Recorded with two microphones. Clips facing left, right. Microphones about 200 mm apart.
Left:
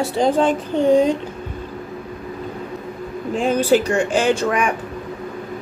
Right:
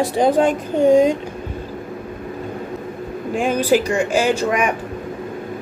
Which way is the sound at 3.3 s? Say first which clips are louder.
Even; 10° right (ahead or behind).